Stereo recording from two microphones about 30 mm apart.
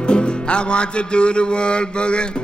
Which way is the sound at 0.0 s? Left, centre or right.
Left.